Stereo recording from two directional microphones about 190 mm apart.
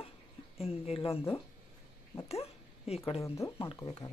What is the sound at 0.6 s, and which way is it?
Speech, 30° left (ahead or behind).